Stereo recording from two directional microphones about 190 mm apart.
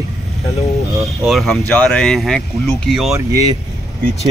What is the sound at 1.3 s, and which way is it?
Speech, centre (ahead or behind).